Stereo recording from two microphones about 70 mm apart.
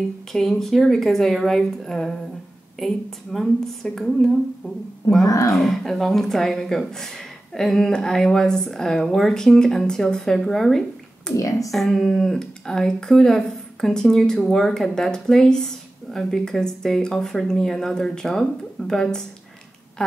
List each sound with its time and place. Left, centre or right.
0.3 s a woman's voice: centre
5.2 s speech: left
5.5 s speech: centre
11.3 s speech: left
11.7 s speech: centre